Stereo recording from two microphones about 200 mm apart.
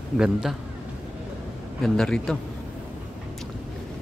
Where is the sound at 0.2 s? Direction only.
5° right (ahead or behind).